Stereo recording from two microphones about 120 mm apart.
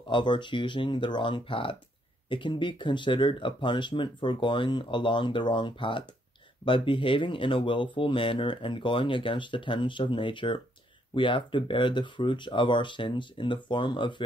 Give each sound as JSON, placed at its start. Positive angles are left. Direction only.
{"t": 0.1, "sound": "speech", "side_deg": 40}